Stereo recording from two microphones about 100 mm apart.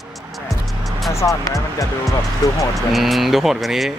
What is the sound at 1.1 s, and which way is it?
Speech, 30° left (ahead or behind).